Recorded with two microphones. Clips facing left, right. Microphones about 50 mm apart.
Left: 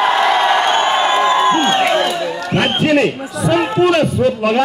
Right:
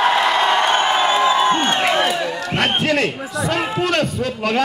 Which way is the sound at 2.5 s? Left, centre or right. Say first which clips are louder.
Left 5 dB; centre.